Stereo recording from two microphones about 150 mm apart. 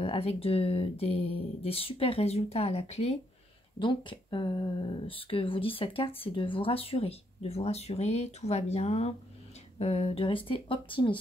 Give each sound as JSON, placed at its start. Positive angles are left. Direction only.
{"t": 0.0, "sound": "speech", "side_deg": 40}
{"t": 3.8, "sound": "speech", "side_deg": 35}